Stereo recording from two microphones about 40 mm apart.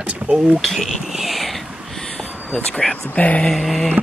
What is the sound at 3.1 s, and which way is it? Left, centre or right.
Speech, left.